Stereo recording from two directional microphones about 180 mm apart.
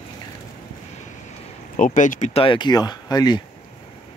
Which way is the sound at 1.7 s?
45° left (ahead or behind).